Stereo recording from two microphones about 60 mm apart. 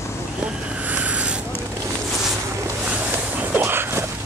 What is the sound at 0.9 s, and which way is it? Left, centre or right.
Vehicle, right.